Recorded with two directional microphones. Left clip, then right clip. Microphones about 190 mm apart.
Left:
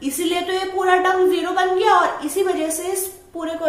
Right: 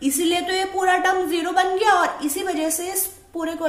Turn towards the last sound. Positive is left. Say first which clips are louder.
# even
turn(degrees=-45)  # may be behind; listen again after turning